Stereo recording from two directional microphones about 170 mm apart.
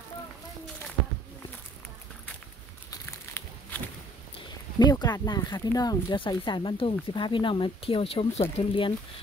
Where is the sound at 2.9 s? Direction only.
15° left (ahead or behind).